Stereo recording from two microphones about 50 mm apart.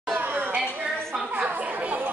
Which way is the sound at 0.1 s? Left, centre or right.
Right.